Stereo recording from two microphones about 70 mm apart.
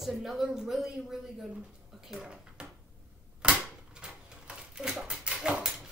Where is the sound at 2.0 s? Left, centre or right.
Centre.